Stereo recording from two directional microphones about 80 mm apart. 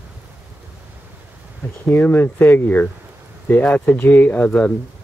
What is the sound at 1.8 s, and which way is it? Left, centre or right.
Speech, left.